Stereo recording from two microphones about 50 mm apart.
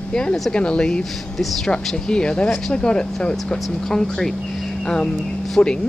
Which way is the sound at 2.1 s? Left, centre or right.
Centre.